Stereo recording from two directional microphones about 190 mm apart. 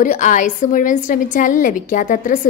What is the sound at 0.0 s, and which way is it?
A woman's voice, 40° left (ahead or behind).